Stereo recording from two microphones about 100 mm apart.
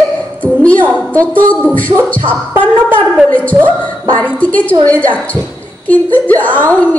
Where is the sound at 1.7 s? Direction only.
15° left (ahead or behind).